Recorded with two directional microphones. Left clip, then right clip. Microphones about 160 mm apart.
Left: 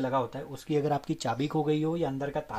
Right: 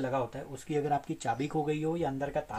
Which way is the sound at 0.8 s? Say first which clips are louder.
Even; 45° left (ahead or behind).